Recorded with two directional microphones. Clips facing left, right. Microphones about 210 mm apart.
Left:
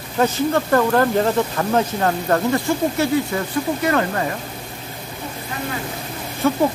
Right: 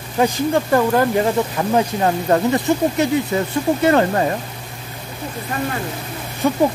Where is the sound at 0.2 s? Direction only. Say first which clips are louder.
Right 1 dB; 10° right (ahead or behind); by 4.3 s 30° right (ahead or behind).